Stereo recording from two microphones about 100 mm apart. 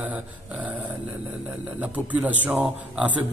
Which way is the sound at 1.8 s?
15° right (ahead or behind).